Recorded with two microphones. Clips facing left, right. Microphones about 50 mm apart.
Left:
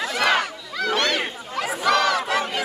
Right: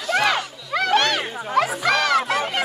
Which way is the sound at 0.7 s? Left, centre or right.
Right.